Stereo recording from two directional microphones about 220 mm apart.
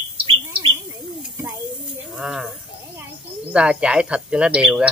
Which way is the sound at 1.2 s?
15° right (ahead or behind).